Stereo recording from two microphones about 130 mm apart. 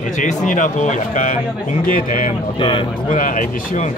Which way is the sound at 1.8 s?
90° left.